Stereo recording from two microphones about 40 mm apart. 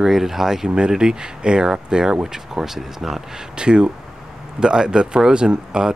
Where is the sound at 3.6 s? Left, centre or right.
Right.